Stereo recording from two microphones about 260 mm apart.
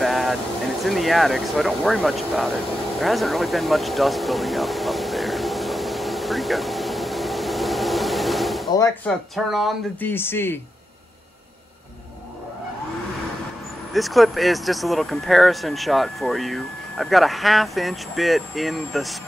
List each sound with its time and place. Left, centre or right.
0.0 s a sound: centre
0.8 s speech: centre
3.0 s a sound: centre
8.7 s speech: centre
9.3 s speech: centre
13.9 s speech: centre